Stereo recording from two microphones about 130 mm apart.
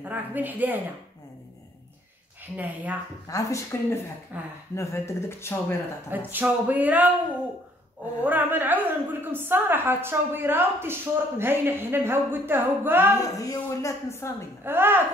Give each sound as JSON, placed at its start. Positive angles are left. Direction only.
{"t": 0.0, "sound": "a woman's voice", "side_deg": -15}
{"t": 2.5, "sound": "a woman's voice", "side_deg": -10}
{"t": 3.3, "sound": "speech", "side_deg": 25}
{"t": 4.3, "sound": "a woman's voice", "side_deg": -10}
{"t": 4.7, "sound": "speech", "side_deg": 20}
{"t": 6.0, "sound": "a woman's voice", "side_deg": -15}
{"t": 8.2, "sound": "a woman's voice", "side_deg": -15}
{"t": 13.2, "sound": "speech", "side_deg": 25}
{"t": 14.6, "sound": "a woman's voice", "side_deg": -15}